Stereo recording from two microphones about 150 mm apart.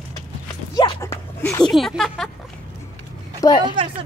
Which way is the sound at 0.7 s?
20° left (ahead or behind).